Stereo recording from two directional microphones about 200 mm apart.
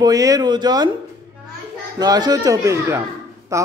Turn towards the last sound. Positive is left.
turn(degrees=-15)  # may be behind; listen again after turning